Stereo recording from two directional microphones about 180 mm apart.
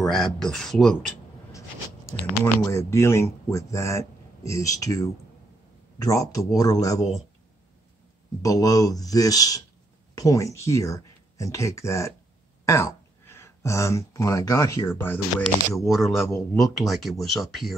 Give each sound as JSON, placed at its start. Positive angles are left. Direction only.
{"t": 0.0, "sound": "speech", "side_deg": 0}
{"t": 2.4, "sound": "speech", "side_deg": 15}
{"t": 8.4, "sound": "speech", "side_deg": 20}
{"t": 15.8, "sound": "speech", "side_deg": 0}